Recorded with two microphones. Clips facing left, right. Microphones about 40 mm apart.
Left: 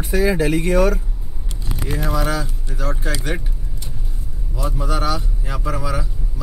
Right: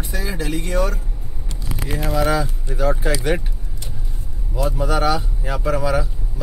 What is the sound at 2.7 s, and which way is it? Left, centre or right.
Speech, centre.